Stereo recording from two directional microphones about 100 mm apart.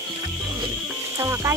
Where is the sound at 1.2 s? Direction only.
30° right (ahead or behind).